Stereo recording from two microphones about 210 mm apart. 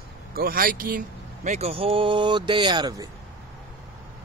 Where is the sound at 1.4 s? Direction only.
30° right (ahead or behind).